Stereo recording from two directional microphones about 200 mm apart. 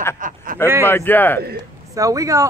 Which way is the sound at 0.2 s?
40° right (ahead or behind).